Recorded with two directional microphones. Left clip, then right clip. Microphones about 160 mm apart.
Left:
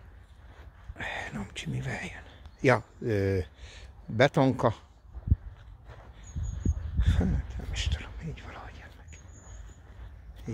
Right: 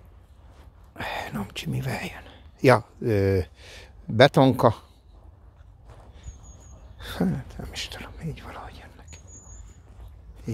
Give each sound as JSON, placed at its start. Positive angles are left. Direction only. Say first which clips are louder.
{"t": 0.9, "sound": "speech", "louder": "right 4 dB", "side_deg": -40}
{"t": 7.0, "sound": "whispering", "louder": "right 5 dB", "side_deg": -40}